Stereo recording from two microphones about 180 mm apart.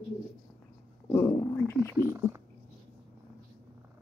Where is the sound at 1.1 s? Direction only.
20° left (ahead or behind).